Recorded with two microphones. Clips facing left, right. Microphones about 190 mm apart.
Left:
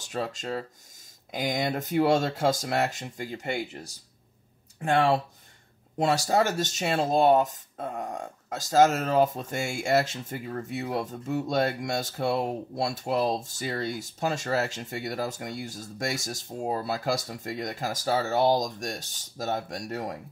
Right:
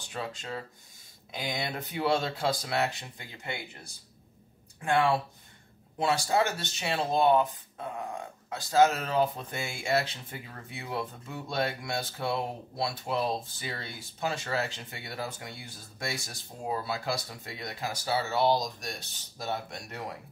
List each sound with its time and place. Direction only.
0.0 s speech: 40° left (ahead or behind)